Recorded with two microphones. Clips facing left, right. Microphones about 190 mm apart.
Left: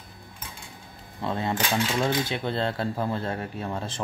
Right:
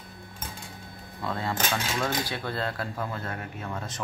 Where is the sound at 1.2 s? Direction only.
20° left (ahead or behind).